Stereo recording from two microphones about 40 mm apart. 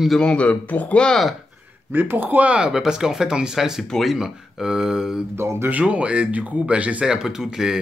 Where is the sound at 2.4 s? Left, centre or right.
Right.